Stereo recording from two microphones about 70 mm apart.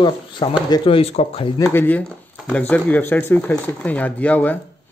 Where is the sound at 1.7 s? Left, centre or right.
Left.